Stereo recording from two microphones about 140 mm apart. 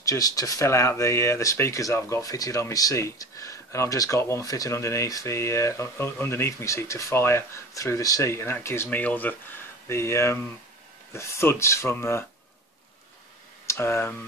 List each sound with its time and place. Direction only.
0.0 s speech: 25° left (ahead or behind)
13.7 s speech: 15° left (ahead or behind)